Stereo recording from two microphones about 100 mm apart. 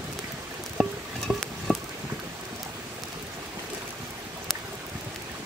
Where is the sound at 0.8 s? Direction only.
Centre (ahead or behind).